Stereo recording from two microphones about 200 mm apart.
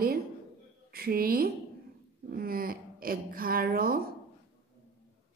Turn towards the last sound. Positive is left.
turn(degrees=-45)  # may be behind; listen again after turning